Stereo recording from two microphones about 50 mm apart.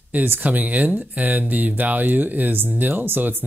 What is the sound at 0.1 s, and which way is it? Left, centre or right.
Speech, right.